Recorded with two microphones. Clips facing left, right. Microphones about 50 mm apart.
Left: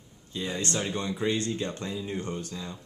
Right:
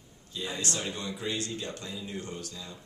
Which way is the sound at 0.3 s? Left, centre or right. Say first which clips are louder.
Left 3 dB; left.